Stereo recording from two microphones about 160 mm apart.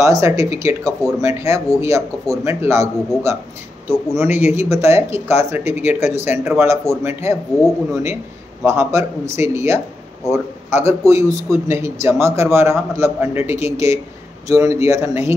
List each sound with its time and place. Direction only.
0.0 s speech: 20° right (ahead or behind)